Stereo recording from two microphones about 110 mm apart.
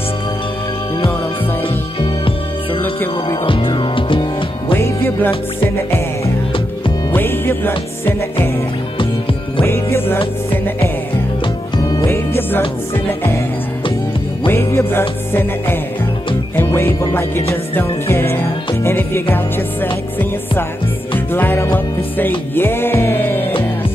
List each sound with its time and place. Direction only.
2.0 s music: 55° left (ahead or behind)
4.7 s music: 25° left (ahead or behind)
7.2 s music: 20° left (ahead or behind)
9.7 s music: 20° left (ahead or behind)
11.7 s music: 40° left (ahead or behind)
12.4 s music: 20° left (ahead or behind)
14.5 s music: 20° left (ahead or behind)
21.3 s music: 20° left (ahead or behind)